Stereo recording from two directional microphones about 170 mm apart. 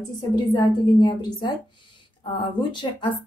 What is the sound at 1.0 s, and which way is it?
Speech, 25° left (ahead or behind).